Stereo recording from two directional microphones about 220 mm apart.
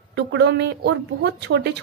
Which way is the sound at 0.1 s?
50° right (ahead or behind).